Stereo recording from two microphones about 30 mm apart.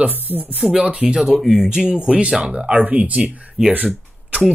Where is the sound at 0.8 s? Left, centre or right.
Right.